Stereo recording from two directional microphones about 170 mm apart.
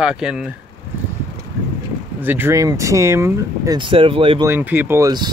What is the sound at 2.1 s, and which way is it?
Speech, 10° right (ahead or behind).